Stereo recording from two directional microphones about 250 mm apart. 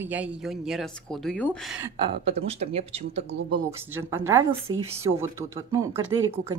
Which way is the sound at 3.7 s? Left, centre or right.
Centre.